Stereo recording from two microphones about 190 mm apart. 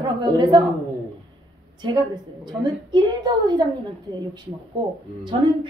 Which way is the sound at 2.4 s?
25° right (ahead or behind).